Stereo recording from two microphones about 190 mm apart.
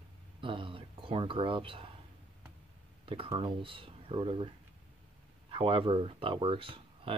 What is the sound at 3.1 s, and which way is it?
Speech, 30° right (ahead or behind).